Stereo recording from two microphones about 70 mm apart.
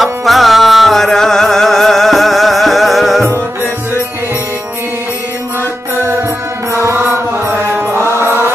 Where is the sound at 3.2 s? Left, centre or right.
Right.